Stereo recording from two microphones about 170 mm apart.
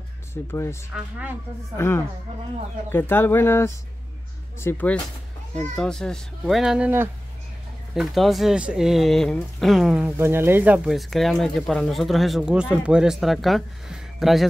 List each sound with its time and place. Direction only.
0.3 s speech: 15° left (ahead or behind)
0.9 s a woman's voice: 5° right (ahead or behind)
1.8 s speech: 15° left (ahead or behind); by 10.1 s 5° right (ahead or behind)
10.1 s speech: 15° right (ahead or behind)